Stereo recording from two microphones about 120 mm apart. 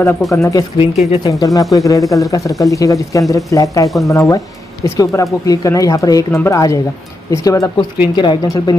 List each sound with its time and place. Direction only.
0.3 s speech: 25° left (ahead or behind)
0.7 s speech: 55° left (ahead or behind)
1.3 s speech: 30° left (ahead or behind)
8.2 s speech: 40° left (ahead or behind)